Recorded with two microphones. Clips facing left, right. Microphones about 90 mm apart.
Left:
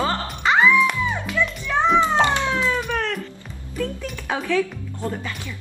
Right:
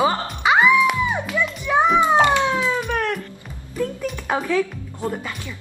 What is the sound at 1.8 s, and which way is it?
Children playing, 15° right (ahead or behind).